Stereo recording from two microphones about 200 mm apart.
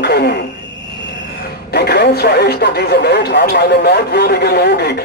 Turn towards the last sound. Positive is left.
turn(degrees=55)  # may be behind; listen again after turning